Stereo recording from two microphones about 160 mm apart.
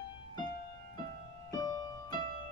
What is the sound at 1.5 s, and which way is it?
Music, 25° left (ahead or behind).